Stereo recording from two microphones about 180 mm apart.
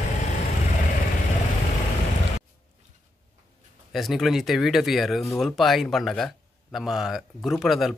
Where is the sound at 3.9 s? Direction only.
Centre (ahead or behind).